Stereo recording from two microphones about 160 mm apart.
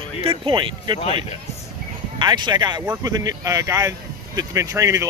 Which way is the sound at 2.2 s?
25° right (ahead or behind).